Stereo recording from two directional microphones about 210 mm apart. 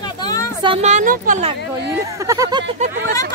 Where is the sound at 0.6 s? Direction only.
25° right (ahead or behind).